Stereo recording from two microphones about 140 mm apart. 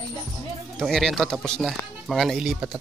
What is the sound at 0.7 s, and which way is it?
Speech, 5° left (ahead or behind).